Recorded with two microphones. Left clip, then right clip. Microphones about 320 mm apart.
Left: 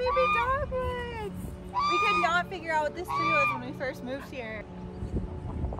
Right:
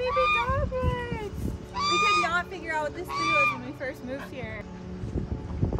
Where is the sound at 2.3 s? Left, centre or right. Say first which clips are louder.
Left 1 dB; centre.